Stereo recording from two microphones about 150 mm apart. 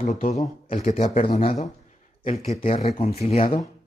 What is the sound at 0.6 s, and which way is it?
Speech, 55° left (ahead or behind).